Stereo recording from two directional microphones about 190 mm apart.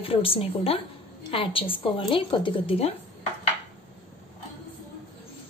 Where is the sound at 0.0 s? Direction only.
30° left (ahead or behind).